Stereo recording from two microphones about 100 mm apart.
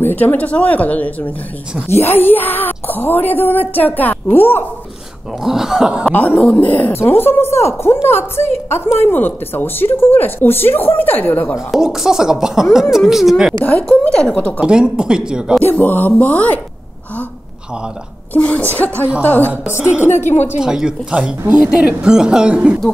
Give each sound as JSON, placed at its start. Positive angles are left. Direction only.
{"t": 0.0, "sound": "a woman's voice", "side_deg": 20}
{"t": 5.4, "sound": "speech", "side_deg": -5}
{"t": 6.1, "sound": "a woman's voice", "side_deg": 15}
{"t": 11.5, "sound": "speech", "side_deg": -5}
{"t": 13.7, "sound": "a woman's voice", "side_deg": 15}
{"t": 14.6, "sound": "speech", "side_deg": -10}
{"t": 15.7, "sound": "a woman's voice", "side_deg": 15}
{"t": 18.3, "sound": "a woman's voice", "side_deg": 15}
{"t": 19.8, "sound": "speech", "side_deg": -10}